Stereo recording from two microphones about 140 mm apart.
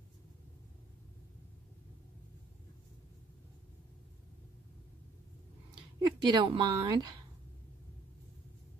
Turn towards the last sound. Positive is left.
turn(degrees=-30)  # may be behind; listen again after turning